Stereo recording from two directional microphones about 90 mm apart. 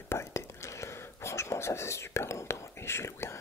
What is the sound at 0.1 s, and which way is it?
Whispering, 30° left (ahead or behind).